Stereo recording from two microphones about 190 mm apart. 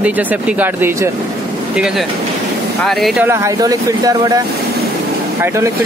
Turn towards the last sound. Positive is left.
turn(degrees=-15)  # may be behind; listen again after turning